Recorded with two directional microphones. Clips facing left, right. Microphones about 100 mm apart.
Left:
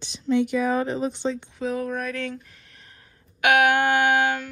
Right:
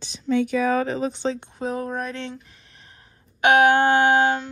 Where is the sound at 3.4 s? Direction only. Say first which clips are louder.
Right 3 dB; 30° right (ahead or behind).